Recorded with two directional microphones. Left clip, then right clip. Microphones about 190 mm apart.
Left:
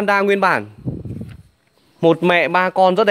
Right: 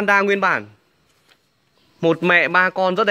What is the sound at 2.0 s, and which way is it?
Speech, 10° left (ahead or behind).